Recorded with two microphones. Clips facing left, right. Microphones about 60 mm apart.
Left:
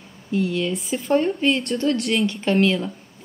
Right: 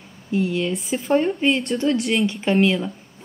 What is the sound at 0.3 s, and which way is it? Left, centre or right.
Speech, centre.